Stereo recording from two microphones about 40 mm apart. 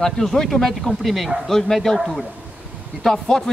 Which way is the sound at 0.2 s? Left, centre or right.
Centre.